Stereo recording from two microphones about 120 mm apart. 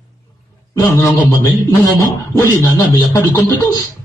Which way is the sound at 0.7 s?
25° left (ahead or behind).